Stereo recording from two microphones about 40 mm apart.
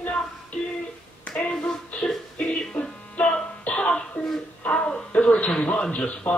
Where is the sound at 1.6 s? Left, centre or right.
Left.